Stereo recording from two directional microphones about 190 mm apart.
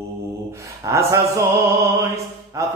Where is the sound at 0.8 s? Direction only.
15° right (ahead or behind).